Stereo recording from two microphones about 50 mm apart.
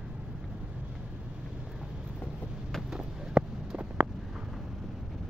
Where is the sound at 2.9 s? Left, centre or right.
Centre.